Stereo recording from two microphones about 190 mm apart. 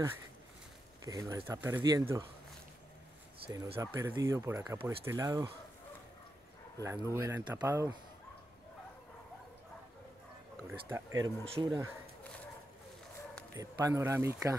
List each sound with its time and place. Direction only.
1.0 s speech: 15° right (ahead or behind)
3.3 s speech: 25° right (ahead or behind)
3.7 s speech: 15° right (ahead or behind)
6.8 s speech: 15° right (ahead or behind)
10.7 s speech: 10° right (ahead or behind)
11.4 s speech: 30° right (ahead or behind)
13.6 s speech: 20° right (ahead or behind)